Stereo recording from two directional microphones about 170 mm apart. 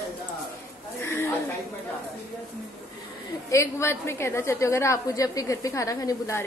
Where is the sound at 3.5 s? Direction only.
15° left (ahead or behind).